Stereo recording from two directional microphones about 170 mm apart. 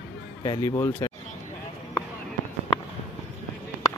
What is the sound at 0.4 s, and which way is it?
Speech, 20° left (ahead or behind).